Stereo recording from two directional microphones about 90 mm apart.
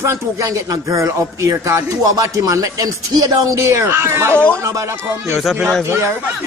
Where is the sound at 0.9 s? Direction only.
35° right (ahead or behind).